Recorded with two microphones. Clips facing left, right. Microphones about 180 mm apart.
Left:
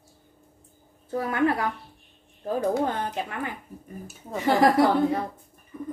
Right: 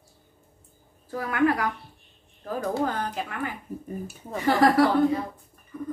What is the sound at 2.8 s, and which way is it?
Speech, 25° left (ahead or behind).